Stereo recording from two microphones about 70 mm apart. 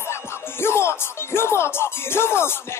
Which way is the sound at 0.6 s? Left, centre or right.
Left.